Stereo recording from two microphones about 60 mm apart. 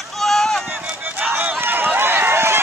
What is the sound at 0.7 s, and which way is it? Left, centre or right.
Run, right.